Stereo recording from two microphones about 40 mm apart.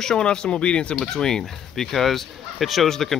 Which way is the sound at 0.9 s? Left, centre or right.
Centre.